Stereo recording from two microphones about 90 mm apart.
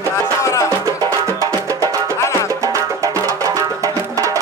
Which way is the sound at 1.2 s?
40° right (ahead or behind).